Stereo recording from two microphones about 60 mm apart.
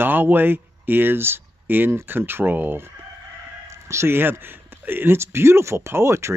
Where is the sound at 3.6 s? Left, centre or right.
Right.